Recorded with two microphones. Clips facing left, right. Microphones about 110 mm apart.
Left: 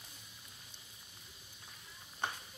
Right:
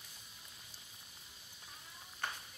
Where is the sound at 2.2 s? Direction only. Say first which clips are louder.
Left 3 dB; 20° left (ahead or behind).